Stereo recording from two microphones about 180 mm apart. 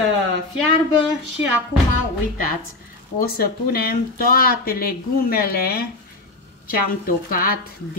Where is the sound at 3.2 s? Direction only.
60° left (ahead or behind).